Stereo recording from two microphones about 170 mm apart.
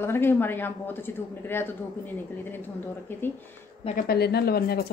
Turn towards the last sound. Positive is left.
turn(degrees=65)  # may be behind; listen again after turning